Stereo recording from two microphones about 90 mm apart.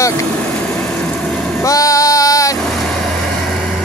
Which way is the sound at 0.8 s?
5° left (ahead or behind).